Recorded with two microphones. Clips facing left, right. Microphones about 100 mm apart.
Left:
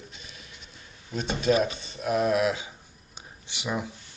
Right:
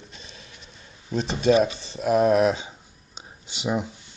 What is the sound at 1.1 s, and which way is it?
Speech, 35° right (ahead or behind).